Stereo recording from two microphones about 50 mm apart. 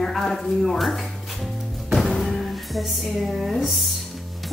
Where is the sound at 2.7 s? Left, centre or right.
Centre.